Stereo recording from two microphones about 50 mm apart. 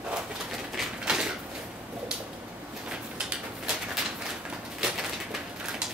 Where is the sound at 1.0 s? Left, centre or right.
Centre.